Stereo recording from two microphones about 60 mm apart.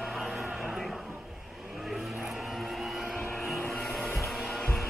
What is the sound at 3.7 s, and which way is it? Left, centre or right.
Music, centre.